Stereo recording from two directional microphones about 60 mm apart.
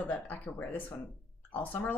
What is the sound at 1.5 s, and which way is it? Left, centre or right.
Speech, left.